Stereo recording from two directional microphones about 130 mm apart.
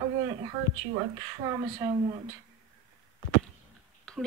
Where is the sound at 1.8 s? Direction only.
25° right (ahead or behind).